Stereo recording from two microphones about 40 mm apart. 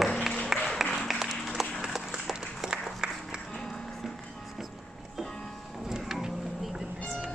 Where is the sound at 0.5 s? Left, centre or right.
Centre.